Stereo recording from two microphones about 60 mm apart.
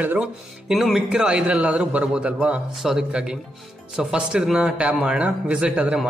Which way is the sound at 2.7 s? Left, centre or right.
Centre.